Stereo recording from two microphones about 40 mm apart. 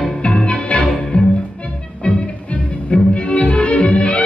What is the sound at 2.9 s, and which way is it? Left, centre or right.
Music, left.